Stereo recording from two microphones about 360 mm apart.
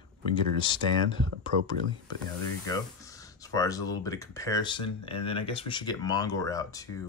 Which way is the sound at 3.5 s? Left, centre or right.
Centre.